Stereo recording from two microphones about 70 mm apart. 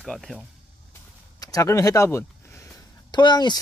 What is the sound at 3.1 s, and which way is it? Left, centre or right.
Speech, left.